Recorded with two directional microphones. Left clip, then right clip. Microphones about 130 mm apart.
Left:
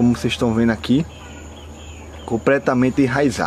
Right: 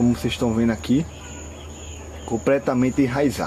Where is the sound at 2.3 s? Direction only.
30° left (ahead or behind).